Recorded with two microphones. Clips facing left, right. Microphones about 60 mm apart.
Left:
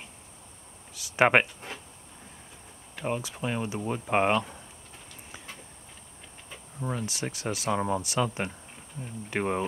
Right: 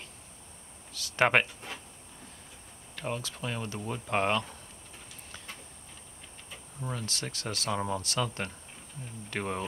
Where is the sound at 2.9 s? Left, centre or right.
Centre.